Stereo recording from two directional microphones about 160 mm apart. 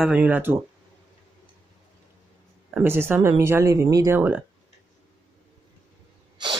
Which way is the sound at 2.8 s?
15° right (ahead or behind).